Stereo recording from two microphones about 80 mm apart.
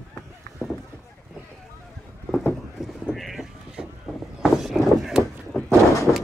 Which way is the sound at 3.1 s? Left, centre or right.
Centre.